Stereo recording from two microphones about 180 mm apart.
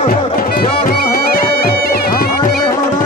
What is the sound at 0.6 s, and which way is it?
Music, 55° left (ahead or behind).